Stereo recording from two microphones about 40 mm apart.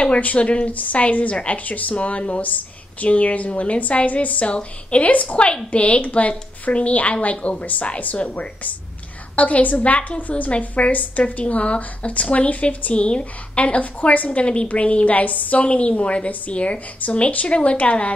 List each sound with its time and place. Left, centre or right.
0.0 s a woman's voice: left
4.5 s a woman's voice: left
14.4 s a woman's voice: left